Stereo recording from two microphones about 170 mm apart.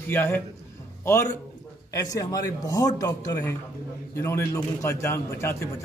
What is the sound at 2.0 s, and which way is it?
A man's voice, 20° left (ahead or behind).